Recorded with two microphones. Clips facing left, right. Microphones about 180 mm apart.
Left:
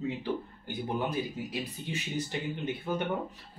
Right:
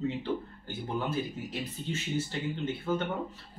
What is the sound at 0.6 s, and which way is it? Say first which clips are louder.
Speech: left 2 dB; 15° left (ahead or behind).